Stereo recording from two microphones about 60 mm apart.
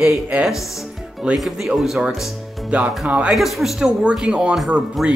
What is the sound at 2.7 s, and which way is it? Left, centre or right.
Speech, right.